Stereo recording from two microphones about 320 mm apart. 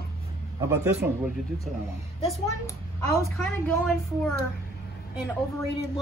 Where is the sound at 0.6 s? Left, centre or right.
Centre.